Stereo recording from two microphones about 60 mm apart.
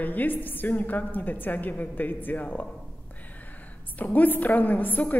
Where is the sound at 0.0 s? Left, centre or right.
Left.